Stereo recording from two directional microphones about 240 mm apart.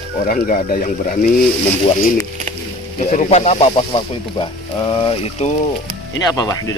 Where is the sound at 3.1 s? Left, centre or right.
Left.